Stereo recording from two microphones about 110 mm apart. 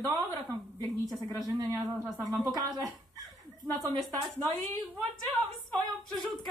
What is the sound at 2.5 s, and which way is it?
Speech, 35° right (ahead or behind).